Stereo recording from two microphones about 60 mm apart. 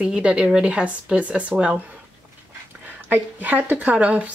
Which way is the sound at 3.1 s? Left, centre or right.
Right.